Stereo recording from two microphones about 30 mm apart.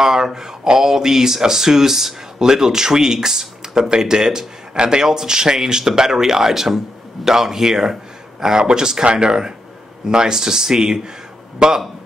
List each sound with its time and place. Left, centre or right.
0.0 s a man's voice: centre